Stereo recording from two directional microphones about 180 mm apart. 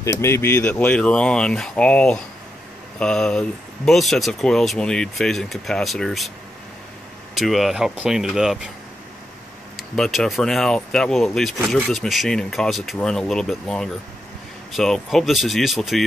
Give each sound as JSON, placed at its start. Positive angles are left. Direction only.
{"t": 0.0, "sound": "speech", "side_deg": 15}
{"t": 7.3, "sound": "speech", "side_deg": 0}
{"t": 9.8, "sound": "speech", "side_deg": 0}